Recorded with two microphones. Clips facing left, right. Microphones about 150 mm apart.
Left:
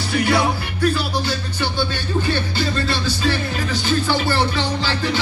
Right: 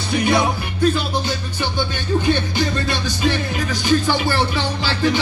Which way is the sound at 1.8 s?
15° right (ahead or behind).